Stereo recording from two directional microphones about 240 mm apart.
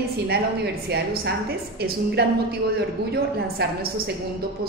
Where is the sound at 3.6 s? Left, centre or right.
Right.